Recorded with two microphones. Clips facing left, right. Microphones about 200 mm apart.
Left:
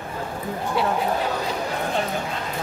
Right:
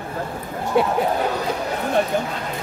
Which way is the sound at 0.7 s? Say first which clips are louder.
Right 5 dB; 55° right (ahead or behind).